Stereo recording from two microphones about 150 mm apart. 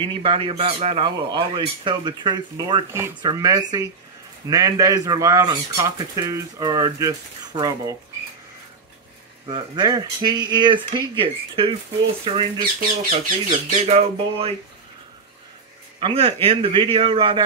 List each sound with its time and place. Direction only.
0.0 s speech: 35° right (ahead or behind)
9.5 s speech: 30° right (ahead or behind)
13.1 s speech: 45° right (ahead or behind)
16.0 s speech: 40° right (ahead or behind)